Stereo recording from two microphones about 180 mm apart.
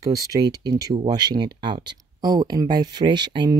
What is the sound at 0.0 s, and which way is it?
Speech, 20° right (ahead or behind).